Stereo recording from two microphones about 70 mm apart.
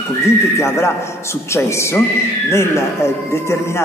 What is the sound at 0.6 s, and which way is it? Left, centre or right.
A man's voice, left.